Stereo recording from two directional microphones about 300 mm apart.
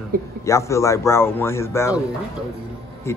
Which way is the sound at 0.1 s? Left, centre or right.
Right.